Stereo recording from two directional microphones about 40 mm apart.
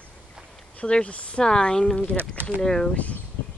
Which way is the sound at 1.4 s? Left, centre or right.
Centre.